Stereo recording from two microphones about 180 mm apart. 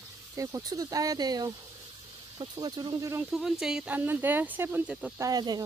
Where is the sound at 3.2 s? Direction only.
5° right (ahead or behind).